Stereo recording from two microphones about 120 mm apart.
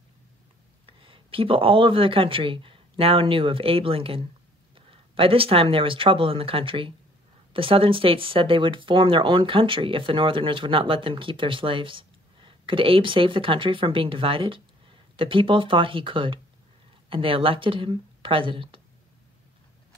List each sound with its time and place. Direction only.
0.9 s speech: 45° right (ahead or behind)